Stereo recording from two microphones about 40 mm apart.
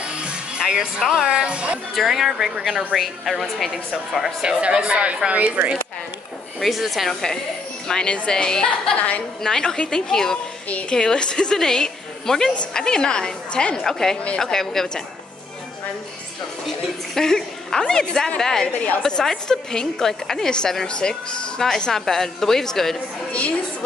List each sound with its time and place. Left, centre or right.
0.0 s music: right
0.7 s speech: centre
1.2 s speech: right
2.0 s a woman's voice: centre
4.5 s a woman's voice: right
6.6 s a woman's voice: centre
7.1 s a woman's voice: centre
8.9 s a woman's voice: left
9.4 s a woman's voice: centre
13.8 s a woman's voice: centre
16.6 s a woman's voice: centre
18.7 s a woman's voice: left
19.0 s a woman's voice: centre